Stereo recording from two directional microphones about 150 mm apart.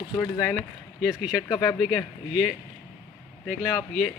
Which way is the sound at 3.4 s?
Centre (ahead or behind).